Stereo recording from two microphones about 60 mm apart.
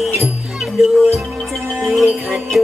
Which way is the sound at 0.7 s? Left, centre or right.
Centre.